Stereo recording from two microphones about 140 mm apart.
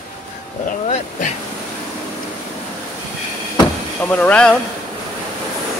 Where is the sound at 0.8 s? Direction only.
55° left (ahead or behind).